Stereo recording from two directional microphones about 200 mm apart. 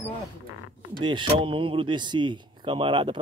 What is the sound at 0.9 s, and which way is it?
Speech, 25° right (ahead or behind).